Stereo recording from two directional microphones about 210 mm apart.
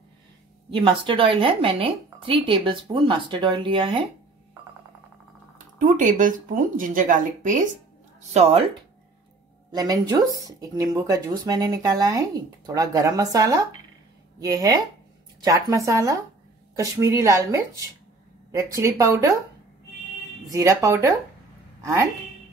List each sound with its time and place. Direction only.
0.7 s speech: 25° right (ahead or behind)
5.8 s speech: 35° right (ahead or behind)
9.7 s speech: 20° right (ahead or behind)
20.4 s speech: 15° right (ahead or behind)